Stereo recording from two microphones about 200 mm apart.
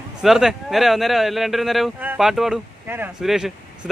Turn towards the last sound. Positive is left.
turn(degrees=-5)  # may be behind; listen again after turning